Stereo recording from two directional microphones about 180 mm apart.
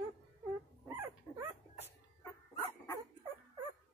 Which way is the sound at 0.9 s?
15° right (ahead or behind).